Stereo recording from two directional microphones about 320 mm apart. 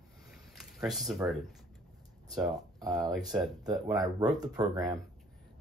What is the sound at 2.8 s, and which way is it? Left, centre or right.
Speech, centre.